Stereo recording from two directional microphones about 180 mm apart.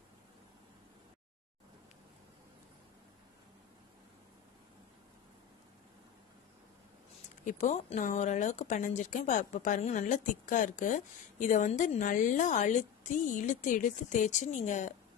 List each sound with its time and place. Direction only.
7.6 s speech: 40° left (ahead or behind)